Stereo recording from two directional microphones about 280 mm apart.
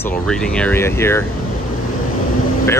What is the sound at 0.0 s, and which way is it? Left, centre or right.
Speech, centre.